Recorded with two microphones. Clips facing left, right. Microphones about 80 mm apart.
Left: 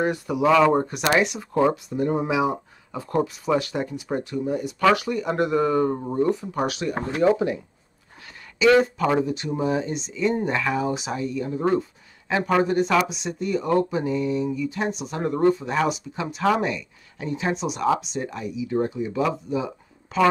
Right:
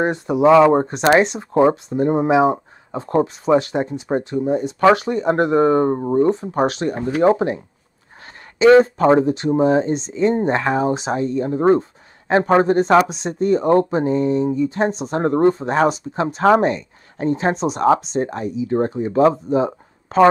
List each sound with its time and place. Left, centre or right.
0.0 s speech: right